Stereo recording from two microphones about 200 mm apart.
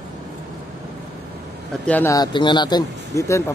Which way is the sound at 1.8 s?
10° left (ahead or behind).